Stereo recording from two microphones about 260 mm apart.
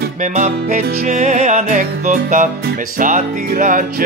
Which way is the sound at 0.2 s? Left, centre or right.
Right.